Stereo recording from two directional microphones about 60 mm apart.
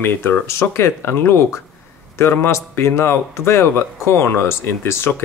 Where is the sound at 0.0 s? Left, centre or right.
Left.